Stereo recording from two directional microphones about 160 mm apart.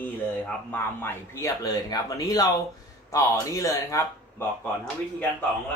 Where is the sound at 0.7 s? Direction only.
15° left (ahead or behind).